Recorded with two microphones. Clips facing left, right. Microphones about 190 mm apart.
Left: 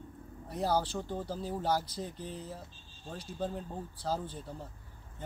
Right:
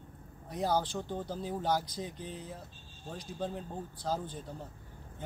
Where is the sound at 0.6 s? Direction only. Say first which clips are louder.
Even; 5° left (ahead or behind).